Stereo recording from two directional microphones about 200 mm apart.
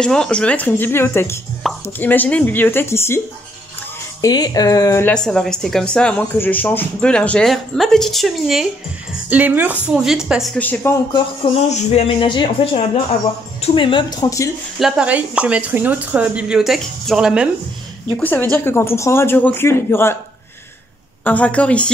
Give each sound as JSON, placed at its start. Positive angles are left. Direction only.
{"t": 0.0, "sound": "speech", "side_deg": 5}
{"t": 4.2, "sound": "speech", "side_deg": 20}
{"t": 11.7, "sound": "speech", "side_deg": 30}
{"t": 14.8, "sound": "speech", "side_deg": -5}
{"t": 18.2, "sound": "speech", "side_deg": 10}
{"t": 21.2, "sound": "speech", "side_deg": 5}